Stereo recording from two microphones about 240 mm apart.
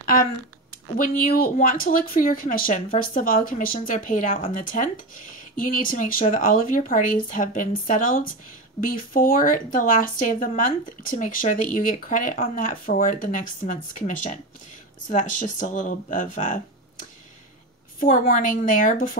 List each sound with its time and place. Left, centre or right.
1.3 s speech: left
17.9 s speech: left